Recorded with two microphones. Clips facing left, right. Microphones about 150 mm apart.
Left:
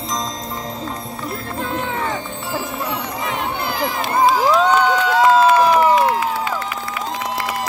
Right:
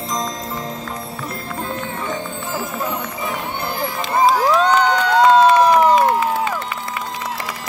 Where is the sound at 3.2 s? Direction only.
90° left.